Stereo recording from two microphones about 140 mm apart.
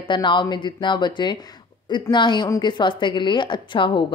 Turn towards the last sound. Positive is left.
turn(degrees=35)  # may be behind; listen again after turning